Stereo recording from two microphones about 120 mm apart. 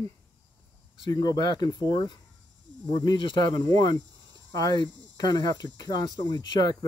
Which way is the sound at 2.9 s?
35° left (ahead or behind).